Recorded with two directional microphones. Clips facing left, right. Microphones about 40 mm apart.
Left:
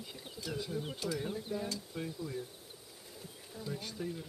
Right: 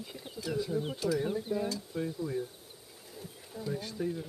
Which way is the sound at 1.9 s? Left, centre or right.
Centre.